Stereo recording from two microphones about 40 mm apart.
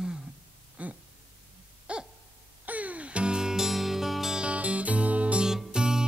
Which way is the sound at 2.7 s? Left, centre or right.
Right.